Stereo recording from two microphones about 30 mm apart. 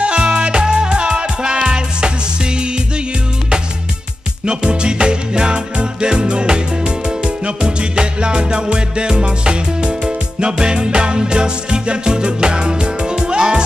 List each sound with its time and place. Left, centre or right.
0.0 s music: right
4.5 s music: right